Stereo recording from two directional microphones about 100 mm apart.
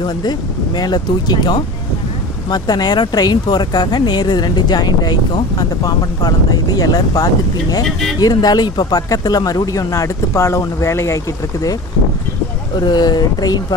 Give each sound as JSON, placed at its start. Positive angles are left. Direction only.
{"t": 0.0, "sound": "speech", "side_deg": 45}
{"t": 7.8, "sound": "speech", "side_deg": 0}
{"t": 8.2, "sound": "speech", "side_deg": 40}
{"t": 12.8, "sound": "speech", "side_deg": 45}